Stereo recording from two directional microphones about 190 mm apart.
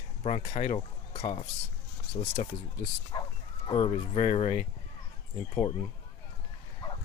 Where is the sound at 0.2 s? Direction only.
35° left (ahead or behind).